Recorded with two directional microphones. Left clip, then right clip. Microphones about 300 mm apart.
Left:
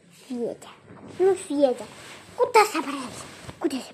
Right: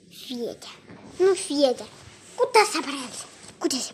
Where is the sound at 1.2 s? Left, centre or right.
Centre.